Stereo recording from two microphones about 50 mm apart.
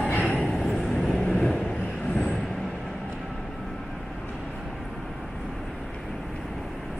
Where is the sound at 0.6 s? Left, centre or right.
Centre.